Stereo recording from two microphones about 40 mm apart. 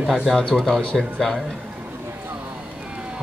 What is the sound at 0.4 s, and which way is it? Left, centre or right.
Speech, left.